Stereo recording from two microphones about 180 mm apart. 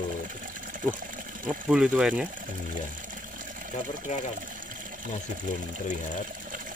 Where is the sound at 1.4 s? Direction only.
5° right (ahead or behind).